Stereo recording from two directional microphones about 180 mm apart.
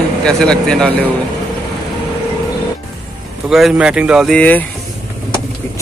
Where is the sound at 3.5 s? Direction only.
5° right (ahead or behind).